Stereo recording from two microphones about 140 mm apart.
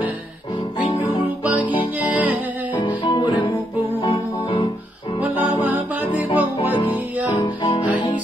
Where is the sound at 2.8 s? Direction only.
30° left (ahead or behind).